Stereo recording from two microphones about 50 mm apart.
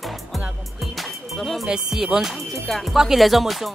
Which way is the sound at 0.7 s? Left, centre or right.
Centre.